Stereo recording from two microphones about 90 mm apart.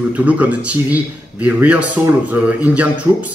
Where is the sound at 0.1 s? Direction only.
15° right (ahead or behind).